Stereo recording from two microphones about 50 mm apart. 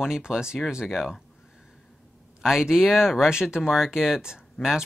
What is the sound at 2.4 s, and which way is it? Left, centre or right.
Speech, centre.